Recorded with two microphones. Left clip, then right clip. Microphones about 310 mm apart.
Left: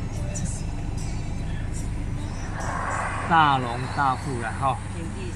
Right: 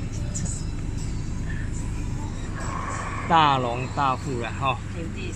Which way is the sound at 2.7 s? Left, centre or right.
Left.